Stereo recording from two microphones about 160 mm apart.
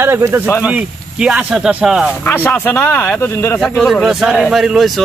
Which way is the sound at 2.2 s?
10° left (ahead or behind).